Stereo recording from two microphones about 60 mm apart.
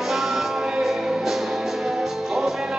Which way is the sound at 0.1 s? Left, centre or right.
Centre.